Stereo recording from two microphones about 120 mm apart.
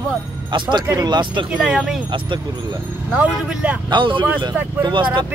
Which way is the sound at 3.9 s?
40° right (ahead or behind).